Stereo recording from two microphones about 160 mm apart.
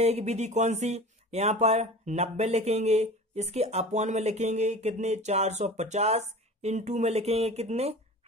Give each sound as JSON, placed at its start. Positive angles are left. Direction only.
{"t": 0.0, "sound": "speech", "side_deg": -45}